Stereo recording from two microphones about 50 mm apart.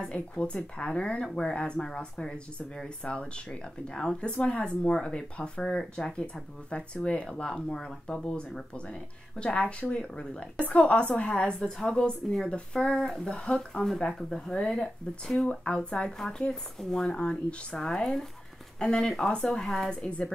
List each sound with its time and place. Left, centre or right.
0.0 s a woman's voice: left
19.3 s a woman's voice: left
19.6 s a woman's voice: centre
20.1 s speech: centre